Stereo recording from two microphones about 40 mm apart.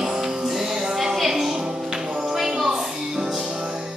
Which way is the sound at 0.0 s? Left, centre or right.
Centre.